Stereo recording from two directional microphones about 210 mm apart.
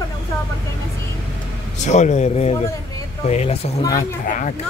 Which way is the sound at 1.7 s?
35° left (ahead or behind).